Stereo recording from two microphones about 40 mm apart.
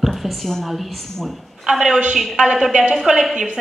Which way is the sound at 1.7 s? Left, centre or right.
Centre.